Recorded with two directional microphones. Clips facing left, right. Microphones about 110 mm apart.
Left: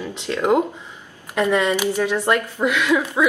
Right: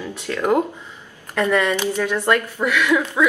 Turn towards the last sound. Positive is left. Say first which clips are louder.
# even
turn(degrees=15)  # may be behind; listen again after turning